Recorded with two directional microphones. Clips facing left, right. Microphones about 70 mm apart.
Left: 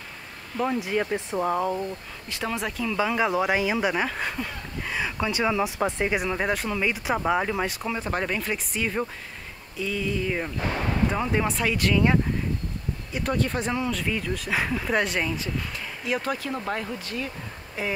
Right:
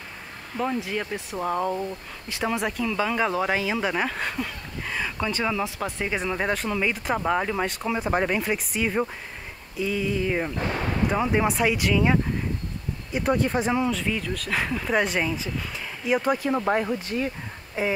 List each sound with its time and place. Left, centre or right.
0.5 s speech: right
0.9 s speech: centre
6.1 s speech: centre
7.9 s speech: centre
13.1 s speech: centre
13.8 s speech: centre; by 17.9 s right